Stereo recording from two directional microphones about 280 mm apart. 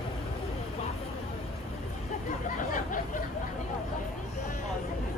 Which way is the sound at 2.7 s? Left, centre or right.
Left.